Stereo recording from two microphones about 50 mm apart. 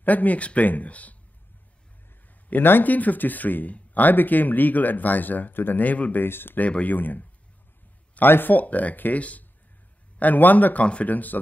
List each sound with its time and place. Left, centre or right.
0.0 s speech: left
2.5 s speech: left
6.2 s speech: left
6.6 s speech: left